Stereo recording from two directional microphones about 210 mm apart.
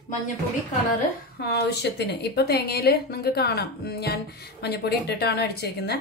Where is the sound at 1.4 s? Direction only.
55° left (ahead or behind).